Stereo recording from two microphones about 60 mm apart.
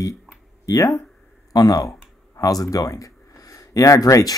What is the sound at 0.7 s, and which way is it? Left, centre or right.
Speech, left.